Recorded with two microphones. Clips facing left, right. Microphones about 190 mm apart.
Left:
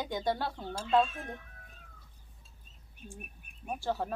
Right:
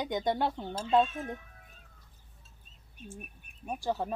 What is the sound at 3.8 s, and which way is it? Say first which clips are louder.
Speech: right 1 dB; 15° right (ahead or behind).